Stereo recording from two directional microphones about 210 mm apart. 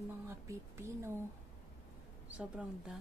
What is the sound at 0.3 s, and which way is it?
Speech, 10° right (ahead or behind).